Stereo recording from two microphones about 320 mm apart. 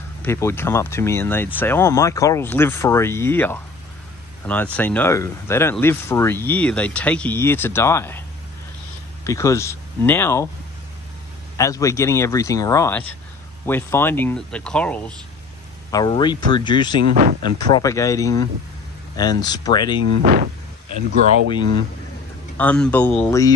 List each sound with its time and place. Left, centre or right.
0.2 s speech: centre
4.7 s speech: centre
9.2 s speech: centre
11.5 s speech: centre
17.1 s speech: right
17.4 s speech: centre
20.2 s speech: right
22.6 s speech: centre